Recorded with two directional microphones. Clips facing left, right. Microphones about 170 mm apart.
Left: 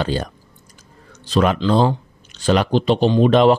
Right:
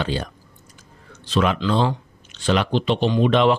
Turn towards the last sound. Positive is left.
turn(degrees=40)  # may be behind; listen again after turning